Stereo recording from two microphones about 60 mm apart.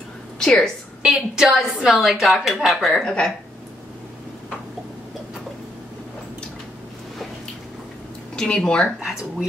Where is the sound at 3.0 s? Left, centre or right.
Centre.